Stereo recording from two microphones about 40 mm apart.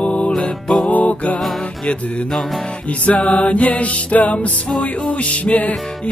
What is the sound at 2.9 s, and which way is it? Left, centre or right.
Music, left.